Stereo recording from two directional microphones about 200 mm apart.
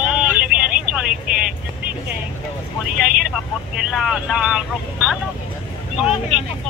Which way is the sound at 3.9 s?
5° right (ahead or behind).